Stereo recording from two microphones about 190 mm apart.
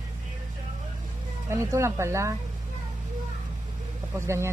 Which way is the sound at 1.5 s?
15° right (ahead or behind).